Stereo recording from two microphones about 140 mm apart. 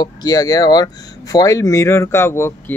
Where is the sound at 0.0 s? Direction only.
25° left (ahead or behind).